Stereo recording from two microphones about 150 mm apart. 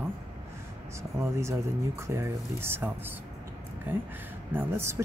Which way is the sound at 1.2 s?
20° right (ahead or behind).